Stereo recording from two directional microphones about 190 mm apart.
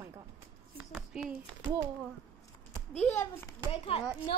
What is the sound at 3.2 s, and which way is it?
Speech, 15° left (ahead or behind).